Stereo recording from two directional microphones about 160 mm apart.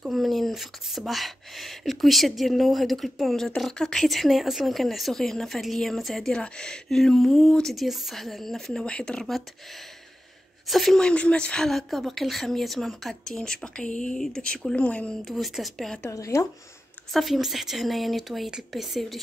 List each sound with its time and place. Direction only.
0.0 s speech: centre (ahead or behind)
10.7 s speech: centre (ahead or behind)
16.0 s speech: 20° left (ahead or behind)
17.1 s speech: centre (ahead or behind)